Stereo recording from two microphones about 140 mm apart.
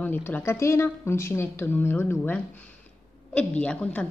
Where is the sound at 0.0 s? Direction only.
15° left (ahead or behind).